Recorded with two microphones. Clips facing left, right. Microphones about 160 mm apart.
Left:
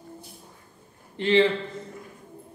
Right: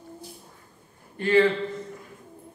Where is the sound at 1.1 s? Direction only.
25° left (ahead or behind).